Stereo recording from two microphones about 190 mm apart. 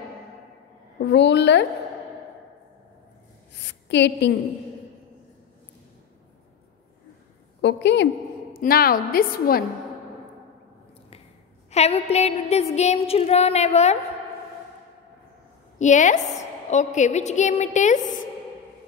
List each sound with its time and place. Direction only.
1.0 s a woman's voice: 65° left (ahead or behind)
3.9 s a woman's voice: 65° left (ahead or behind)
7.6 s a woman's voice: 65° left (ahead or behind)
8.5 s a woman's voice: 50° left (ahead or behind)
11.7 s a sound: 35° left (ahead or behind)
15.8 s a sound: 40° left (ahead or behind)